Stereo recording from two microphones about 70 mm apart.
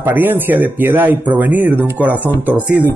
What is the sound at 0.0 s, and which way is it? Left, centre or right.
Speech, right.